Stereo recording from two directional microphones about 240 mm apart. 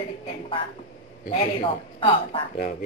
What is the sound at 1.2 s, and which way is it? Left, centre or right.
A woman's voice, left.